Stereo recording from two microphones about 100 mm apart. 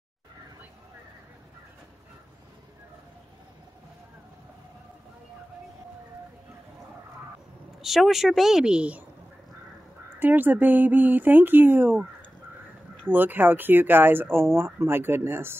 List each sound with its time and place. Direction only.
7.8 s speech: centre (ahead or behind)
10.1 s speech: 20° right (ahead or behind)